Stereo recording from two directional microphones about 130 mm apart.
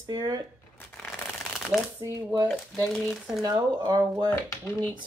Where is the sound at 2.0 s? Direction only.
25° right (ahead or behind).